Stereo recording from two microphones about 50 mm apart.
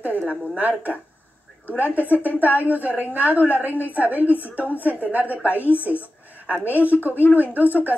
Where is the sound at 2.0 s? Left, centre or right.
Left.